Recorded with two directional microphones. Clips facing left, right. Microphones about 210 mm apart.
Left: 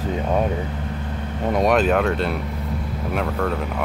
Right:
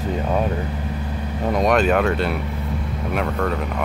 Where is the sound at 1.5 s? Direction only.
5° left (ahead or behind).